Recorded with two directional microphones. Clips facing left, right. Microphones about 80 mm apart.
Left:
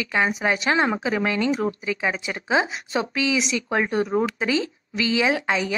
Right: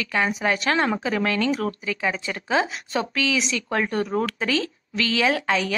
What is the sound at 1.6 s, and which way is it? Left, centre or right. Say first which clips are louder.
Speech: left 1 dB; centre.